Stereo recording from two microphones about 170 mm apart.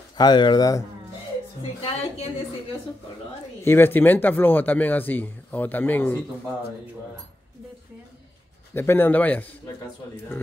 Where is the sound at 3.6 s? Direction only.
15° left (ahead or behind).